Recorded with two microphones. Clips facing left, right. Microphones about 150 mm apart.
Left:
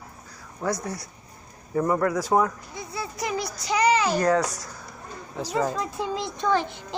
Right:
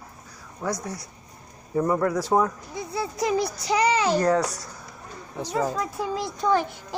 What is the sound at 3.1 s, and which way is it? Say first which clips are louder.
A child's voice: right 6 dB; 25° right (ahead or behind).